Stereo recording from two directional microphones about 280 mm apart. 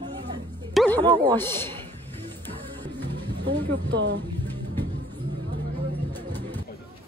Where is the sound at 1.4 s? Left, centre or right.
Centre.